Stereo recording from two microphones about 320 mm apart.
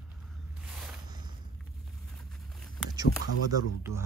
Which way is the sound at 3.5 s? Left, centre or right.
Centre.